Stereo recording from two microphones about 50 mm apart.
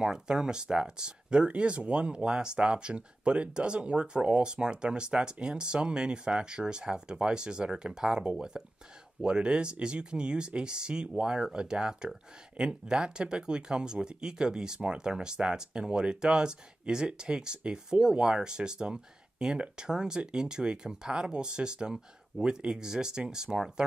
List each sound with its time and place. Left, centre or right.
0.0 s speech: centre